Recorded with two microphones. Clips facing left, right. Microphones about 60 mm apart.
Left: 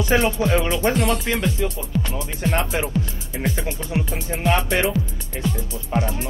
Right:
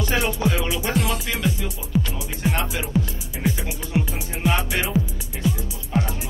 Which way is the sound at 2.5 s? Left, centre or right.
Left.